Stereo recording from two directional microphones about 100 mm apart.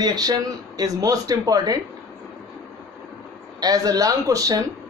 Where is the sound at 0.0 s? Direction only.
40° right (ahead or behind).